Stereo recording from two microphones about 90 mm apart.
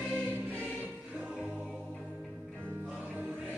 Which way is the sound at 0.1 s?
20° right (ahead or behind).